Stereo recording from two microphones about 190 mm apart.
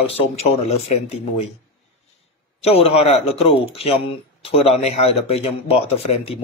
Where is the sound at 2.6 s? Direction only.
30° left (ahead or behind).